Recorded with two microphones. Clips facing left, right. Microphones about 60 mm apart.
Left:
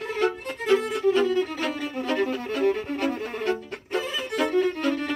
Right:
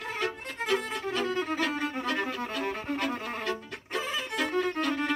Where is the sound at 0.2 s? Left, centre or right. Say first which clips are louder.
Left 9 dB; left.